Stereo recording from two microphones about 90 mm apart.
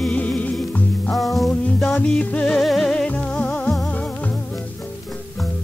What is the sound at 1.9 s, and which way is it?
Music, 15° left (ahead or behind).